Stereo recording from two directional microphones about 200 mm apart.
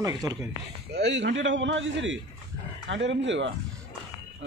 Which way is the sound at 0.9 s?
60° right (ahead or behind).